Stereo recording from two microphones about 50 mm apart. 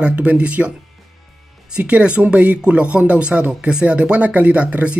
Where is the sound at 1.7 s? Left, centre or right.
Right.